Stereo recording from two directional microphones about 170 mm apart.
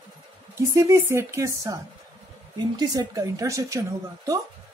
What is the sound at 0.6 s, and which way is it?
A woman's voice, 20° right (ahead or behind).